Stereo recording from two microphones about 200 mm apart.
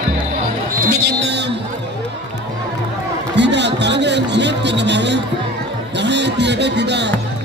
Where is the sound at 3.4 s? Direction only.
60° right (ahead or behind).